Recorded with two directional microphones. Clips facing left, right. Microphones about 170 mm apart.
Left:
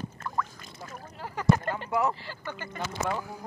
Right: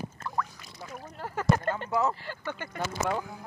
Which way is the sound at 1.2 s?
50° right (ahead or behind).